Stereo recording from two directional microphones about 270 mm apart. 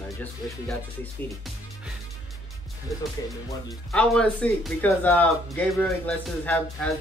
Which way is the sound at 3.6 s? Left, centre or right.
Centre.